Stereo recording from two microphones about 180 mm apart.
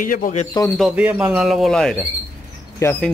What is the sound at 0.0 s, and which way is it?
Speech, 50° left (ahead or behind).